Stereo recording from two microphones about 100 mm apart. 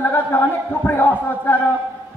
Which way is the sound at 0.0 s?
20° left (ahead or behind).